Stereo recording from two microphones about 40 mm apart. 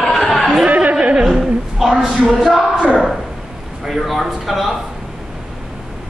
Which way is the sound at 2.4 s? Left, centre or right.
Centre.